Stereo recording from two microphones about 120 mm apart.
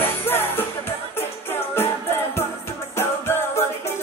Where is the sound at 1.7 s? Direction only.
20° left (ahead or behind).